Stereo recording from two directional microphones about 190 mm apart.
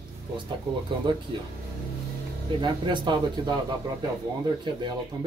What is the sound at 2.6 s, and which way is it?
Speech, 25° right (ahead or behind).